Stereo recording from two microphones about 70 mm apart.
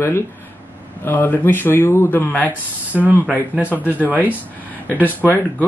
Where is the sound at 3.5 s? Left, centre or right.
Right.